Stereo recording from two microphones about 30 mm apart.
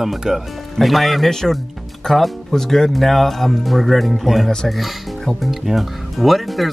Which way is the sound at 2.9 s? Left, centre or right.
Centre.